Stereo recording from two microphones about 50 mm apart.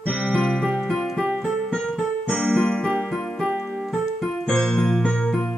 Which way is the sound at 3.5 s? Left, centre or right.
Centre.